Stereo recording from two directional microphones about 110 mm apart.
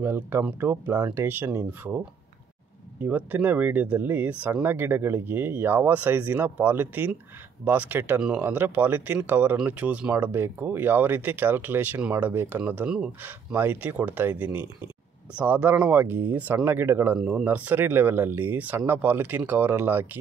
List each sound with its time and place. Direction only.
0.0 s speech: 20° right (ahead or behind)
3.0 s speech: 15° right (ahead or behind)